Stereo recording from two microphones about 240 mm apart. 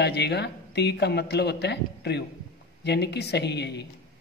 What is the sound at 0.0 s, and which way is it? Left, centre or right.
Speech, left.